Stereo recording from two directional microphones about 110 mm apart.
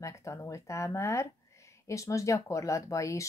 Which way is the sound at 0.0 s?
25° left (ahead or behind).